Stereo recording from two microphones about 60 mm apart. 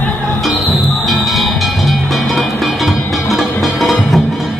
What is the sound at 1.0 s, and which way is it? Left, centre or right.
Music, centre.